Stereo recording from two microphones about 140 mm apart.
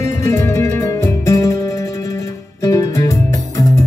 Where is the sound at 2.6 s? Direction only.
25° left (ahead or behind).